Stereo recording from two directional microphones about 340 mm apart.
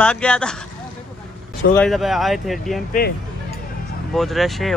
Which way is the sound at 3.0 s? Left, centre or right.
Left.